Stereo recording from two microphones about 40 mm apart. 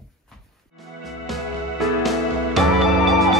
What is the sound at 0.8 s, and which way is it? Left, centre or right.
Music, centre.